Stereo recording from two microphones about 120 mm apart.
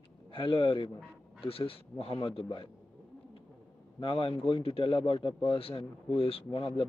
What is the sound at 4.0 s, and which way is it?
Speech, 45° left (ahead or behind).